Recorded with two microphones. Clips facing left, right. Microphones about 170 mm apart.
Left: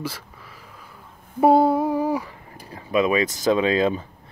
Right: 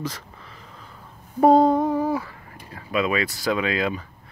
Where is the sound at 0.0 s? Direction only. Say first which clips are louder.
Even; 10° left (ahead or behind).